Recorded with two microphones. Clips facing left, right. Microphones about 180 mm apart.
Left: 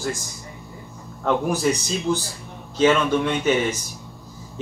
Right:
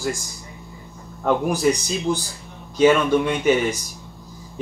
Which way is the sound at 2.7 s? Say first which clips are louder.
Right 2 dB; 10° right (ahead or behind).